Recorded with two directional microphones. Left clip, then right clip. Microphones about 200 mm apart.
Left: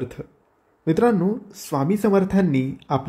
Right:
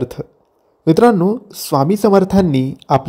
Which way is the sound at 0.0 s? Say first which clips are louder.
Right 8 dB; 30° right (ahead or behind).